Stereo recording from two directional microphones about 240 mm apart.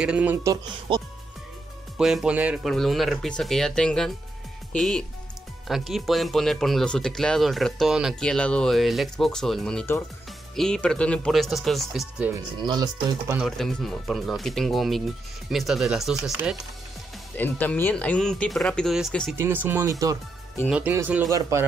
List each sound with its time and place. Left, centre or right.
0.0 s speech: centre
2.0 s speech: centre
12.6 s speech: centre
13.4 s speech: centre